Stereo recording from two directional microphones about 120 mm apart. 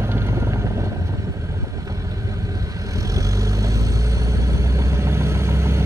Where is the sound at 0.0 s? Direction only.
20° right (ahead or behind).